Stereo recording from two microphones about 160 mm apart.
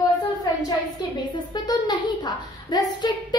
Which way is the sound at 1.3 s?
25° left (ahead or behind).